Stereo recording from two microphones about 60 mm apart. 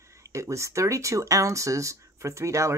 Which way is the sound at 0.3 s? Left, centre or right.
Right.